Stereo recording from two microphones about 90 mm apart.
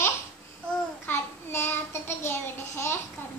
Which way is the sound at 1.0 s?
25° left (ahead or behind).